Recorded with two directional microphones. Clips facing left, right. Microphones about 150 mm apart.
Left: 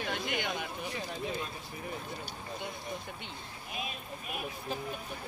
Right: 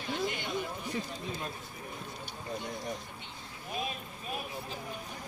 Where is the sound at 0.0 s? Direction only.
70° left (ahead or behind).